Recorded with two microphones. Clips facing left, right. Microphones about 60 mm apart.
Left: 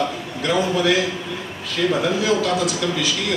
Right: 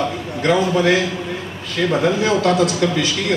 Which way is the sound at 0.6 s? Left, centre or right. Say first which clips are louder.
Even; right.